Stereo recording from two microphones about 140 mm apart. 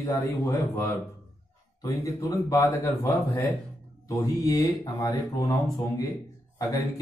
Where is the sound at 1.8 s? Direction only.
20° left (ahead or behind).